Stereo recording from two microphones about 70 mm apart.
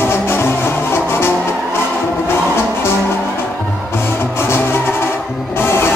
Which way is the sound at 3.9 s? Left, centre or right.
Left.